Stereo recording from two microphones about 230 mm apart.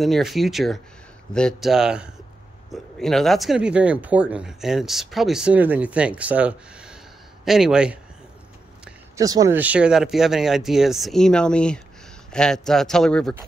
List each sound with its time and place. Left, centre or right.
0.0 s speech: centre
8.8 s a man's voice: centre